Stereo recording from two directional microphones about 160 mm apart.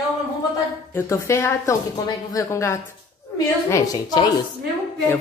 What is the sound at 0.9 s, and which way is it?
A woman's voice, 20° left (ahead or behind).